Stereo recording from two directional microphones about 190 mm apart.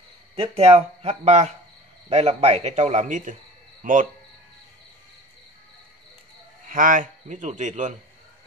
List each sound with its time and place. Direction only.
0.4 s speech: 30° right (ahead or behind)
6.7 s speech: 45° right (ahead or behind)